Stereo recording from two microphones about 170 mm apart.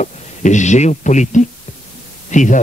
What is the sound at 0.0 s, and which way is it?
Speech, 45° left (ahead or behind).